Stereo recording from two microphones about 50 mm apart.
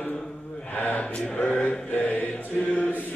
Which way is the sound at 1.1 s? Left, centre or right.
Left.